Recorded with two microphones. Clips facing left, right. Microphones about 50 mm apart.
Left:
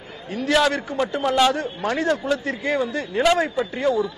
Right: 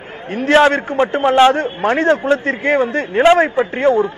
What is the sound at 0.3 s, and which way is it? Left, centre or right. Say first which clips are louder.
A man's voice: right 8 dB; right.